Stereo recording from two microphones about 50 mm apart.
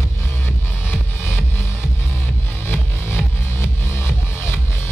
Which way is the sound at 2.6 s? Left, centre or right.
Left.